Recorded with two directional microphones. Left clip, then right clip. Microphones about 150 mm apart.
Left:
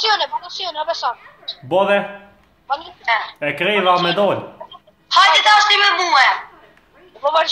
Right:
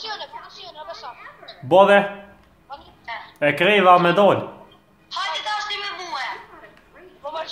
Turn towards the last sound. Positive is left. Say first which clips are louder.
# left 14 dB
turn(degrees=45)  # may be behind; listen again after turning